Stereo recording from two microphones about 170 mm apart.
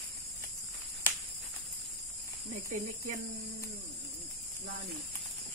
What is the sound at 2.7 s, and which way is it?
Speech, 45° right (ahead or behind).